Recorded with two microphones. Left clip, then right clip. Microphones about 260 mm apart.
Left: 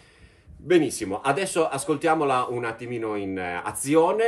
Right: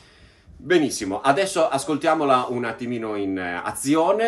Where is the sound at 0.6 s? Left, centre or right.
Centre.